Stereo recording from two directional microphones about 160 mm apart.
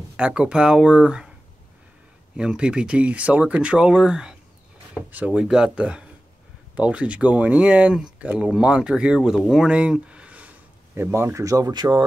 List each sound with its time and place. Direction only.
0.2 s speech: 5° right (ahead or behind)
2.3 s speech: 5° right (ahead or behind); by 12.0 s 25° right (ahead or behind)